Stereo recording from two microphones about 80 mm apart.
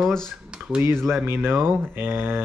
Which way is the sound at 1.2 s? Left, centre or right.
Right.